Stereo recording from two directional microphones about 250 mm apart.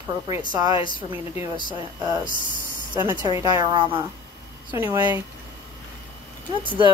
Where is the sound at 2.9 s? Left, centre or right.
Centre.